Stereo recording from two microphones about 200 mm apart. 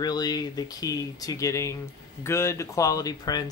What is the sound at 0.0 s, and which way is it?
Speech, 20° left (ahead or behind).